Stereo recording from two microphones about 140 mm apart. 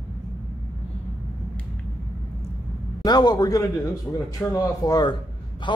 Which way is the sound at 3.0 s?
30° left (ahead or behind).